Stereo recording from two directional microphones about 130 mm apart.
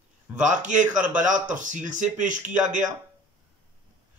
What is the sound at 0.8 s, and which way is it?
Speech, 10° right (ahead or behind).